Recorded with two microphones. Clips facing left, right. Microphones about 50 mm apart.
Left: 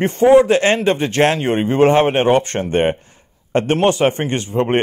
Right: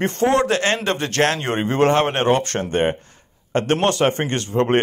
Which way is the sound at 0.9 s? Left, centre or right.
Centre.